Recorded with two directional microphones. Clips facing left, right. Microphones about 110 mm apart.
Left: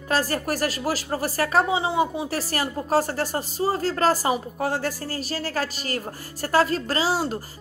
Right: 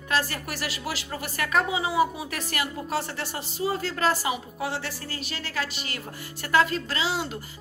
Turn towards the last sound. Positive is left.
turn(degrees=40)  # may be behind; listen again after turning